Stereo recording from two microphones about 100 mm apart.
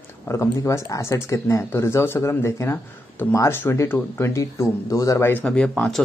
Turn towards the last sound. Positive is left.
turn(degrees=10)  # may be behind; listen again after turning